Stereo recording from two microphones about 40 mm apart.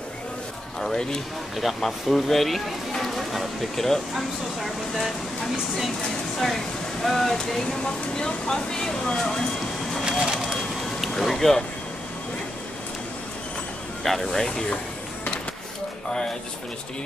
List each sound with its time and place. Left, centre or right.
1.6 s speech: centre
4.1 s speech: centre
10.0 s speech: centre
10.4 s vehicle: centre
14.0 s speech: centre
16.1 s speech: centre